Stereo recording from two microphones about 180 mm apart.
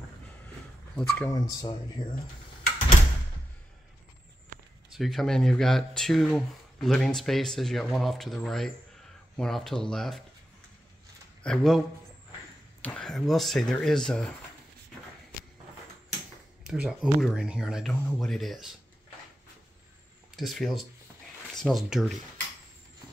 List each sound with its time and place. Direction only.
0.9 s speech: 5° left (ahead or behind)
1.3 s speech: 20° left (ahead or behind)
2.0 s speech: 50° left (ahead or behind)
4.5 s a sound: 45° right (ahead or behind)
4.9 s speech: centre (ahead or behind)
11.4 s speech: 5° left (ahead or behind)
12.8 s speech: 5° left (ahead or behind)
16.6 s speech: 5° right (ahead or behind)
20.3 s speech: centre (ahead or behind)